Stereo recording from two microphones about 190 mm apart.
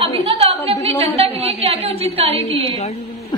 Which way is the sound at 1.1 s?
30° right (ahead or behind).